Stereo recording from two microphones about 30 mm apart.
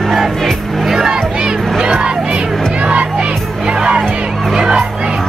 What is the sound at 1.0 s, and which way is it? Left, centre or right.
Music, right.